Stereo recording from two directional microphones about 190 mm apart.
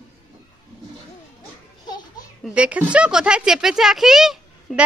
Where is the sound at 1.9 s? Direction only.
20° left (ahead or behind).